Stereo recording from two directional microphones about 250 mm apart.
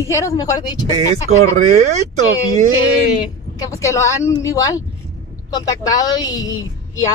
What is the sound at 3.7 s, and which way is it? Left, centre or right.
Speech, centre.